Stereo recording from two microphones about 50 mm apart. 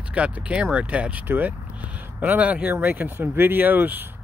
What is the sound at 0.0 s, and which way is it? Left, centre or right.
Speech, right.